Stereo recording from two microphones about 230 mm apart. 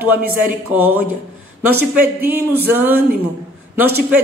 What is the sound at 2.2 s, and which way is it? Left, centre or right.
Speech, centre.